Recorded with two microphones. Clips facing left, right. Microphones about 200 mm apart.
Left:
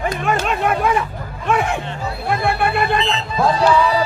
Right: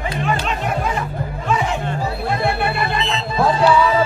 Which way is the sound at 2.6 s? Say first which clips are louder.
Left 3 dB; 45° left (ahead or behind).